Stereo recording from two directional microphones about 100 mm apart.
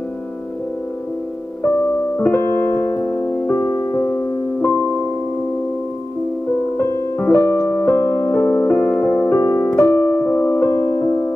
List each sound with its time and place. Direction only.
2.2 s music: 20° left (ahead or behind)
6.8 s music: 25° left (ahead or behind)
8.4 s piano: 15° left (ahead or behind); by 11.1 s 30° left (ahead or behind)